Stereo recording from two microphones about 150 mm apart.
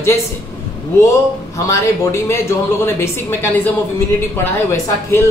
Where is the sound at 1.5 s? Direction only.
20° left (ahead or behind).